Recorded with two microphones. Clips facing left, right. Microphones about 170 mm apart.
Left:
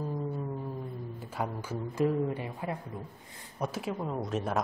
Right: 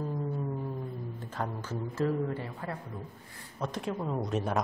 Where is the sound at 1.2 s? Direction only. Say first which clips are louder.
Left 2 dB; 10° left (ahead or behind).